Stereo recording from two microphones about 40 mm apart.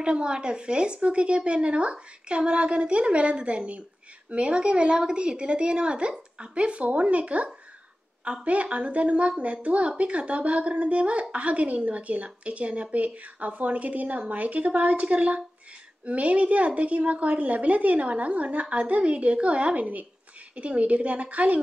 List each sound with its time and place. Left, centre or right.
0.0 s a woman's voice: right